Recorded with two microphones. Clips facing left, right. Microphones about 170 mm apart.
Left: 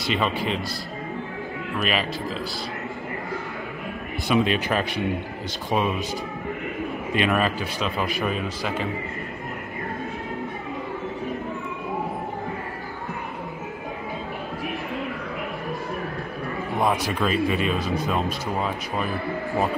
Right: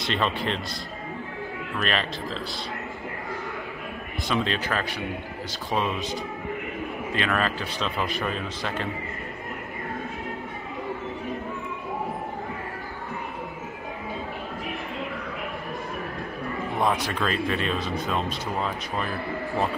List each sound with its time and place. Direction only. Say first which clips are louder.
0.0 s speech: left 2 dB; 5° left (ahead or behind)
1.8 s speech: left 2 dB; 5° left (ahead or behind)
4.3 s speech: left 5 dB; 15° left (ahead or behind)
7.2 s speech: left 4 dB; 15° left (ahead or behind)
16.8 s speech: left 2 dB; 5° left (ahead or behind)